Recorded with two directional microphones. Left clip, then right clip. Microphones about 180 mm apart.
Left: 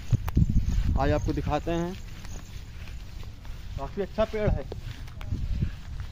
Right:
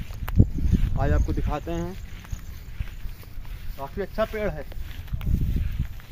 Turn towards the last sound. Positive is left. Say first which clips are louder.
# right 1 dB
turn(degrees=-15)  # may be behind; listen again after turning